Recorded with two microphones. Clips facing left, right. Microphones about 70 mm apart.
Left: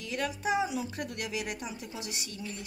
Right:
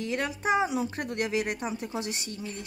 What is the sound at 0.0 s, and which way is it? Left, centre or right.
A woman's voice, right.